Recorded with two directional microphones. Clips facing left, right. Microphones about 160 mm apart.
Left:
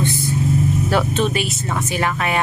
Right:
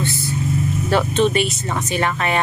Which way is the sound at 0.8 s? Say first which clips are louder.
Right 2 dB; 5° left (ahead or behind).